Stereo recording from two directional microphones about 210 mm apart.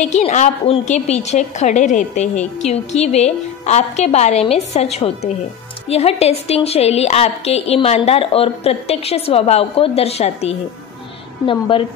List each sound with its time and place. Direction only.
0.0 s a woman's voice: 35° left (ahead or behind)